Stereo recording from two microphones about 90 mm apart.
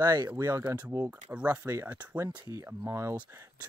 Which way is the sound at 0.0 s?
45° right (ahead or behind).